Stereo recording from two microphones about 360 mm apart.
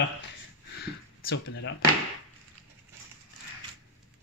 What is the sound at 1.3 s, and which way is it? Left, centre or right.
Speech, left.